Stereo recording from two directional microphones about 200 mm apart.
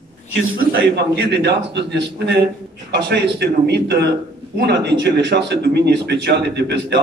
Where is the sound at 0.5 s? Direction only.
65° right (ahead or behind).